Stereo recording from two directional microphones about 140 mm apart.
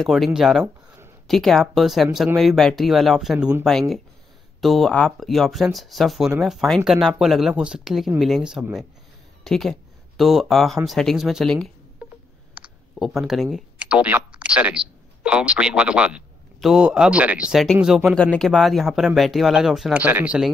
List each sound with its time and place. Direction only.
0.0 s speech: centre (ahead or behind)
12.5 s clicking: 10° right (ahead or behind)
13.0 s speech: centre (ahead or behind)